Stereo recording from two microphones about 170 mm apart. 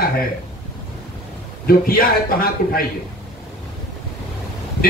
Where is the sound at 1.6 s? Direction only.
60° left (ahead or behind).